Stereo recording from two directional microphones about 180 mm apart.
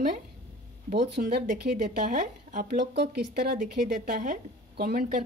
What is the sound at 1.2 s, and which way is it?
Speech, 45° right (ahead or behind).